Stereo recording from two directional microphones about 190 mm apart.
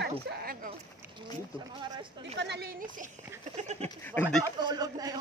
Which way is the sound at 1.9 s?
25° right (ahead or behind).